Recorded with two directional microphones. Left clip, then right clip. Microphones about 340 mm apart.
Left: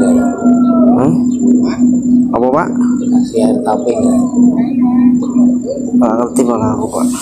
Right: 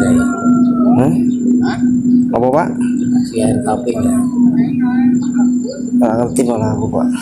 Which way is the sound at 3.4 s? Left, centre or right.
Right.